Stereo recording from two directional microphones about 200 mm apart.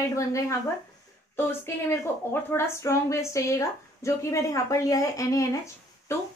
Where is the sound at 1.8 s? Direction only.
10° left (ahead or behind).